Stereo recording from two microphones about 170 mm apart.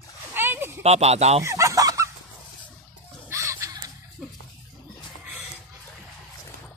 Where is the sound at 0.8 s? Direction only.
40° right (ahead or behind).